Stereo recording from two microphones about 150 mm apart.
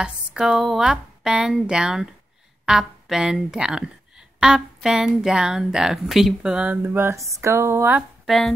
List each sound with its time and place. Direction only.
0.0 s speech: 5° right (ahead or behind)
8.3 s speech: centre (ahead or behind)